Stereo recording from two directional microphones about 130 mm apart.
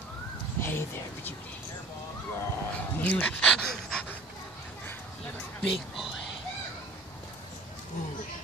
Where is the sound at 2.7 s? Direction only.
10° left (ahead or behind).